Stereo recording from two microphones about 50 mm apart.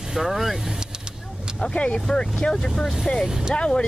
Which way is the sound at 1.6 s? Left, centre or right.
Centre.